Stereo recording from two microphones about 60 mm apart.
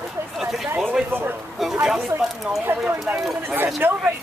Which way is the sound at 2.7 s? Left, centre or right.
Right.